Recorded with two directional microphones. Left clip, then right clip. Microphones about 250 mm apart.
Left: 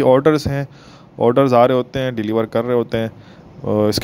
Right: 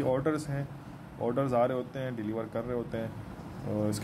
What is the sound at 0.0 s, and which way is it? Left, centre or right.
Speech, left.